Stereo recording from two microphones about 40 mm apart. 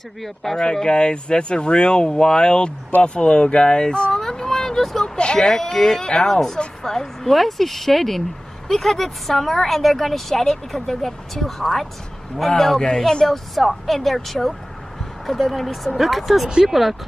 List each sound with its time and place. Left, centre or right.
0.2 s speech: centre
4.1 s a sound: centre
5.0 s speech: left; by 16.9 s centre